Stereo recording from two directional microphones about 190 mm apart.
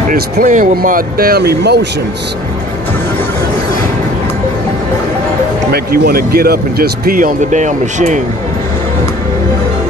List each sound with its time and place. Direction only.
0.1 s speech: 45° right (ahead or behind); by 1.9 s 60° right (ahead or behind)
5.7 s speech: 55° right (ahead or behind)